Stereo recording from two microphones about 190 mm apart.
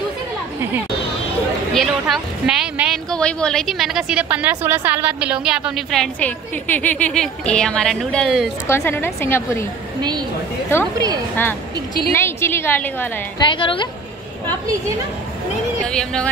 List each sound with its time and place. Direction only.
1.8 s speech: centre (ahead or behind)
8.6 s a woman's voice: 15° left (ahead or behind)
12.1 s a woman's voice: 15° left (ahead or behind)
13.4 s a woman's voice: 25° left (ahead or behind)
14.4 s a woman's voice: 20° right (ahead or behind)
15.9 s speech: 5° left (ahead or behind)